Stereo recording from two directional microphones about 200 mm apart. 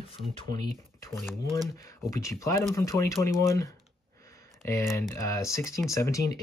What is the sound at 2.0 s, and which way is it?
Speech, 15° left (ahead or behind).